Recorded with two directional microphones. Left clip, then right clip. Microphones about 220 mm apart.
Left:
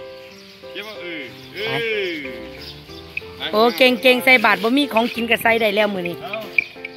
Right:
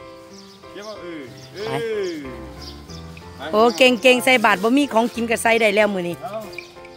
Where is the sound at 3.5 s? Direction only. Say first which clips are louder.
Even; 10° right (ahead or behind).